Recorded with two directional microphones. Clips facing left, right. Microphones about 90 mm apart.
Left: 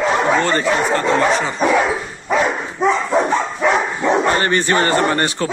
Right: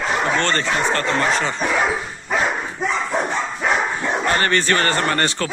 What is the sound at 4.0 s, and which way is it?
Speech, 20° left (ahead or behind).